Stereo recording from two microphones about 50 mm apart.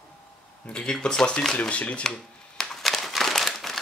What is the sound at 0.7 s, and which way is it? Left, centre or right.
Speech, centre.